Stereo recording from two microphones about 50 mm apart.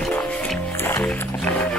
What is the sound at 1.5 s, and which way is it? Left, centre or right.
Wild animals, left.